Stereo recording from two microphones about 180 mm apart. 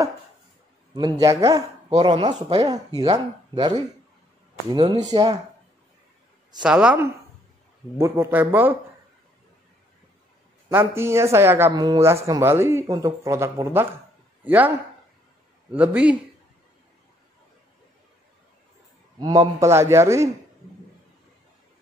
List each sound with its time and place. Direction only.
0.9 s speech: 20° right (ahead or behind)
5.1 s speech: 20° right (ahead or behind)
6.6 s a woman's voice: 5° right (ahead or behind)
10.7 s speech: 10° right (ahead or behind)
15.7 s speech: 10° right (ahead or behind)
19.1 s speech: 20° right (ahead or behind)